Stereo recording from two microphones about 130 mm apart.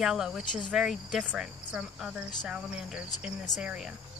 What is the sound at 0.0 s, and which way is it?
Speech, 5° right (ahead or behind).